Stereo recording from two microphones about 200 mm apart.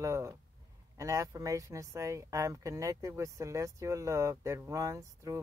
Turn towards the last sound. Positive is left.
turn(degrees=-15)  # may be behind; listen again after turning